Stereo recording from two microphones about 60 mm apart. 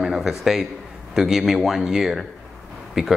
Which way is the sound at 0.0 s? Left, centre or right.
Centre.